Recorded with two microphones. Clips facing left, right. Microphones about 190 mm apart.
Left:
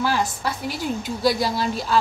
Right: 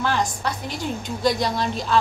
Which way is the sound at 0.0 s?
5° left (ahead or behind).